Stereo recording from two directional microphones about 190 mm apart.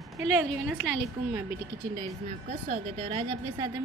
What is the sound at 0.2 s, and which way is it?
Speech, 5° right (ahead or behind).